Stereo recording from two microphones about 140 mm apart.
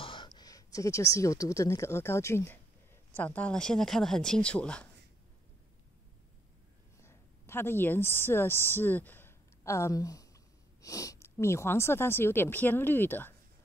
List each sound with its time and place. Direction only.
0.0 s speech: 35° left (ahead or behind); by 4.8 s 10° left (ahead or behind)
7.0 s a woman's voice: 15° left (ahead or behind)